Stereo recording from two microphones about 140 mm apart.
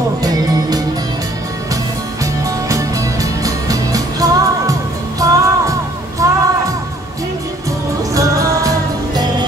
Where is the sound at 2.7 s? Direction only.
25° right (ahead or behind).